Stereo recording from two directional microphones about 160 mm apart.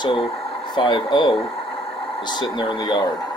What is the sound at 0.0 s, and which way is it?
Speech, 30° left (ahead or behind).